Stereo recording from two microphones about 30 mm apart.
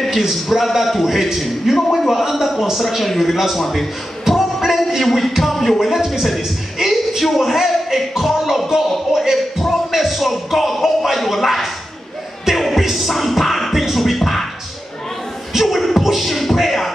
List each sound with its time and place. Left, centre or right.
0.1 s a man's voice: centre
1.9 s a sound: centre
2.8 s a man's voice: centre
4.3 s a sound: centre
5.4 s a man's voice: centre
6.8 s music: centre
7.5 s a sound: centre
8.2 s music: centre
9.1 s a man's voice: centre
9.8 s music: centre
11.1 s a man's voice: centre
12.5 s music: centre
15.5 s a sound: centre
16.0 s beatboxing: centre